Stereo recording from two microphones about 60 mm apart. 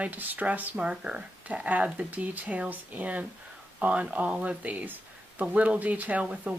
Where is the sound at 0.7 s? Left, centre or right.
Centre.